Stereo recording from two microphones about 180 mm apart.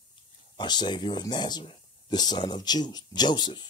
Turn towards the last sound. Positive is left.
turn(degrees=25)  # may be behind; listen again after turning